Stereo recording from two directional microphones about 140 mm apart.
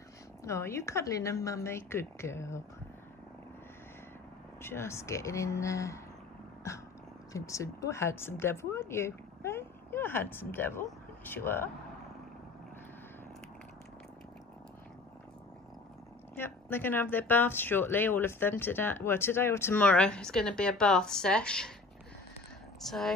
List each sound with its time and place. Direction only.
0.4 s a woman's voice: 20° left (ahead or behind)
4.6 s a woman's voice: 20° left (ahead or behind)
7.3 s a woman's voice: 20° left (ahead or behind)
16.3 s a woman's voice: 15° left (ahead or behind)
22.8 s speech: centre (ahead or behind)